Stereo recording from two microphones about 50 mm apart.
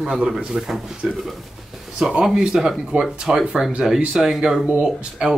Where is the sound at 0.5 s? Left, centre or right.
Centre.